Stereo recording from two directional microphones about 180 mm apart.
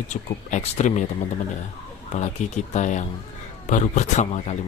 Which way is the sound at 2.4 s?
40° left (ahead or behind).